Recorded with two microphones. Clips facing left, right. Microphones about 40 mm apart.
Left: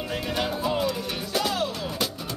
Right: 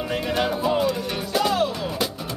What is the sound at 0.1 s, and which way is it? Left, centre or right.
Music, centre.